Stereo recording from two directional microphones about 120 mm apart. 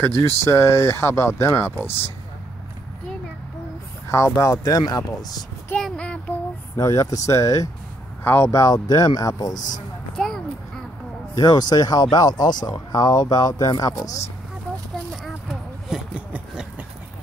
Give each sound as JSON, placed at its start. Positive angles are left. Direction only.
{"t": 0.0, "sound": "speech", "side_deg": 20}
{"t": 4.1, "sound": "speech", "side_deg": 25}
{"t": 5.8, "sound": "child singing", "side_deg": 5}
{"t": 6.8, "sound": "speech", "side_deg": 30}
{"t": 10.1, "sound": "a sound", "side_deg": 5}
{"t": 11.3, "sound": "speech", "side_deg": 35}
{"t": 15.2, "sound": "a sound", "side_deg": -5}